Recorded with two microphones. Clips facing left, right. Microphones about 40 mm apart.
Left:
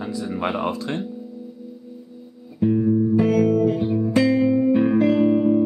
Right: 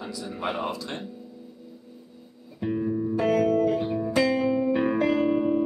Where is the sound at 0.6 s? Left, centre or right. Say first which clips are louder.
Left 6 dB; left.